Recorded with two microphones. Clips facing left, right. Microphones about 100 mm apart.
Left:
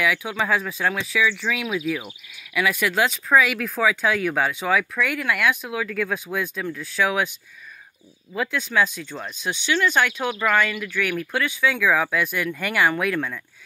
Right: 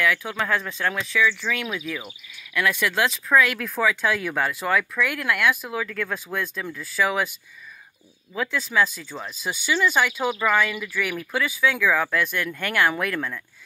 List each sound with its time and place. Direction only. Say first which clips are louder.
0.0 s speech: left 1 dB; 5° left (ahead or behind)